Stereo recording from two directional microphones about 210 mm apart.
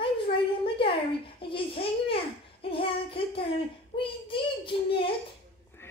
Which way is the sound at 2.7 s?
25° left (ahead or behind).